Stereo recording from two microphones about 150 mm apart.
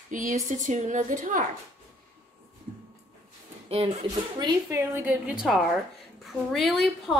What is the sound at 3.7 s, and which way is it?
Speech, 40° right (ahead or behind).